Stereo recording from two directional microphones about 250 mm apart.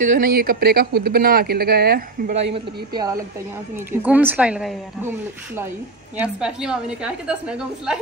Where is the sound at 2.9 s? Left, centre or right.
Centre.